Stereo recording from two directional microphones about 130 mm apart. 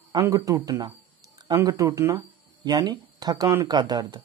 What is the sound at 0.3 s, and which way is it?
Speech, 25° right (ahead or behind).